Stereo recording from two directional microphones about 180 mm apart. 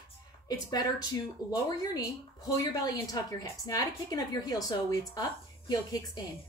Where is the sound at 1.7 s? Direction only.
20° left (ahead or behind).